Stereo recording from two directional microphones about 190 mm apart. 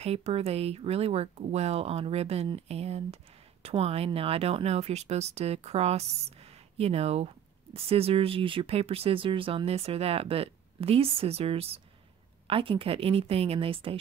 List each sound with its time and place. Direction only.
0.0 s a woman's voice: 35° right (ahead or behind)